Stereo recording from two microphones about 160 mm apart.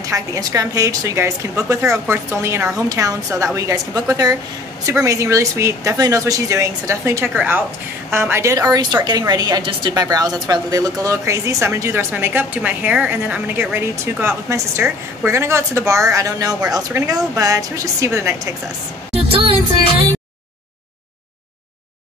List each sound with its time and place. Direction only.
0.0 s a woman's voice: 20° right (ahead or behind)